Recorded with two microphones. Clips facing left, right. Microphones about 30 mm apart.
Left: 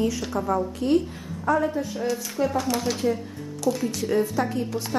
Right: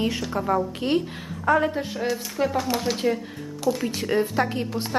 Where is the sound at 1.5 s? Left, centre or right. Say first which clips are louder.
Right 2 dB; right.